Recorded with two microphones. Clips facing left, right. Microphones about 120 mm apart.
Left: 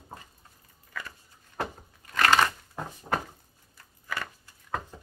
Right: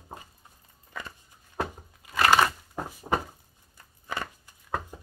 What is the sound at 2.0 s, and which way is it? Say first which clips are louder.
Crushing: right 1 dB; 10° right (ahead or behind).